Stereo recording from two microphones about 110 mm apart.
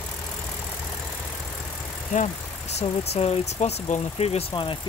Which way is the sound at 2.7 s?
70° left (ahead or behind).